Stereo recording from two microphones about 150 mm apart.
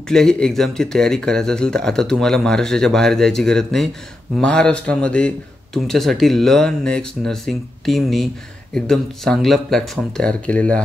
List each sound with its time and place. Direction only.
0.1 s a man's voice: 5° left (ahead or behind)